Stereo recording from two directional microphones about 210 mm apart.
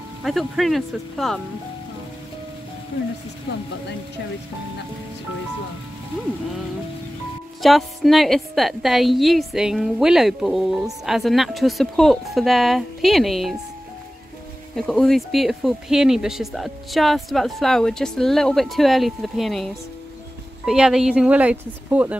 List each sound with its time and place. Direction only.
0.2 s speech: centre (ahead or behind)
7.6 s speech: centre (ahead or behind)
14.8 s speech: centre (ahead or behind)